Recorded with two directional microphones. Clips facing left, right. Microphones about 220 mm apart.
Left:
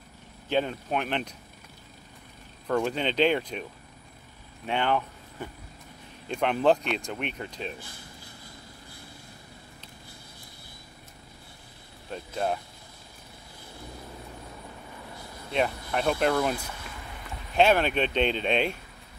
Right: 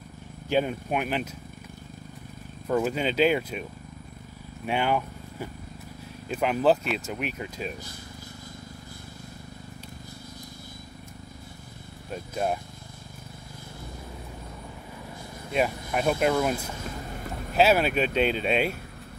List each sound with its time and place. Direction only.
0.5 s speech: 10° right (ahead or behind)
2.7 s speech: 5° right (ahead or behind)
4.6 s speech: 10° right (ahead or behind)
12.1 s speech: 10° right (ahead or behind)
15.5 s speech: 10° right (ahead or behind)
16.8 s a sound: 45° right (ahead or behind)
17.6 s speech: 5° right (ahead or behind)